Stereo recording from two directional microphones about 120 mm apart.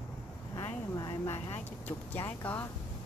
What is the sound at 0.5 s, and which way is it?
Speech, 25° left (ahead or behind).